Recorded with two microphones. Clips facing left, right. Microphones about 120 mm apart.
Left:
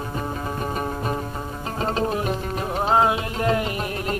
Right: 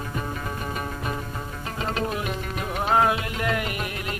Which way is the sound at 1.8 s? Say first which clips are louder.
Left 4 dB; 35° left (ahead or behind).